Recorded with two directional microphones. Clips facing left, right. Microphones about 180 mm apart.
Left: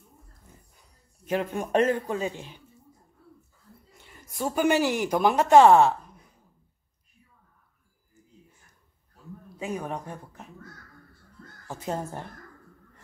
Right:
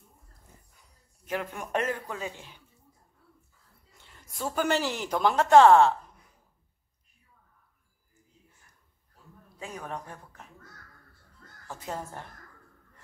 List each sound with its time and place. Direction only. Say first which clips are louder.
1.2 s a man's voice: left 6 dB; 25° left (ahead or behind)
4.0 s speech: left 4 dB; 15° left (ahead or behind)
9.6 s speech: left 6 dB; 10° left (ahead or behind)
11.6 s a man's voice: left 5 dB; 20° left (ahead or behind)